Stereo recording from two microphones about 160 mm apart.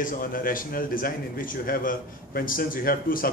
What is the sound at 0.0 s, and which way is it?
A man's voice, 65° left (ahead or behind).